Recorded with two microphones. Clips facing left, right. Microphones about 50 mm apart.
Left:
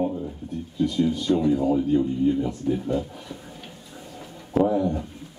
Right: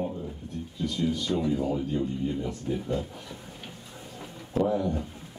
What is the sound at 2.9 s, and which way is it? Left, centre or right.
Speech, left.